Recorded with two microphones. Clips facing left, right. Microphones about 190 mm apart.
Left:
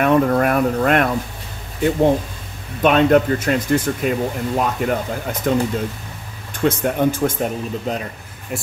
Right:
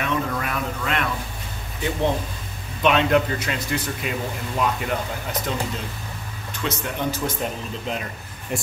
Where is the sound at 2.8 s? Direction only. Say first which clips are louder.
Left 5 dB; 50° left (ahead or behind).